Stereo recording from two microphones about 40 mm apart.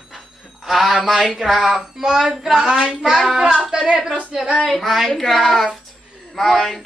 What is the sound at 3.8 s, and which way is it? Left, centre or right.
Speech, right.